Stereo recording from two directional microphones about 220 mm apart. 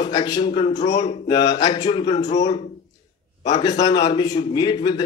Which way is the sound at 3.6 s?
20° left (ahead or behind).